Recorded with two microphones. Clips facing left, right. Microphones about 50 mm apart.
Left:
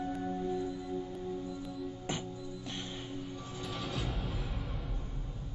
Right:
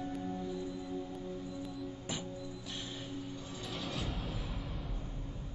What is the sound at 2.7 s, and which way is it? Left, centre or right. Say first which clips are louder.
Music: left 3 dB; left.